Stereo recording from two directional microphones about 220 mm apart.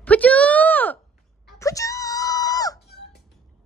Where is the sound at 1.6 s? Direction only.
15° left (ahead or behind).